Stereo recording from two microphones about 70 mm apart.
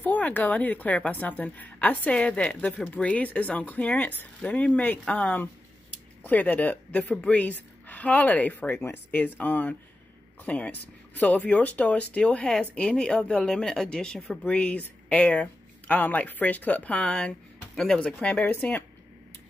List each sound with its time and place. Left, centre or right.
0.0 s a woman's voice: left; by 14.4 s centre
14.4 s a woman's voice: centre